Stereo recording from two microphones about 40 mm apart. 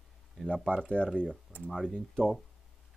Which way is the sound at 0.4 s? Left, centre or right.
Left.